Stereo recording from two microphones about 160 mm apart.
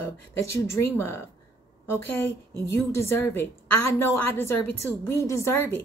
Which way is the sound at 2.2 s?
15° left (ahead or behind).